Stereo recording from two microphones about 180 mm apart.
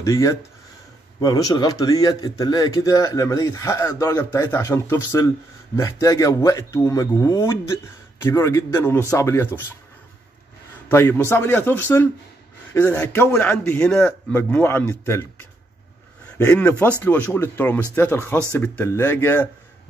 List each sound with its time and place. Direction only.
0.0 s speech: 15° left (ahead or behind)
10.9 s speech: 15° left (ahead or behind)
16.3 s speech: 10° left (ahead or behind)